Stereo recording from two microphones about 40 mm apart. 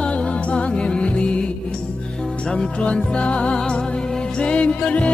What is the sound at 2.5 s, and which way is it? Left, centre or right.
Music, left.